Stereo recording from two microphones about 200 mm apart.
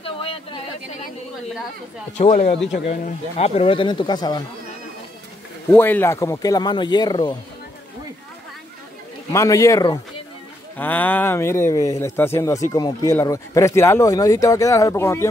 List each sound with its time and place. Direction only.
0.0 s a sound: 30° left (ahead or behind)
2.1 s speech: 35° left (ahead or behind)
5.7 s speech: 10° left (ahead or behind)
9.3 s speech: 15° left (ahead or behind)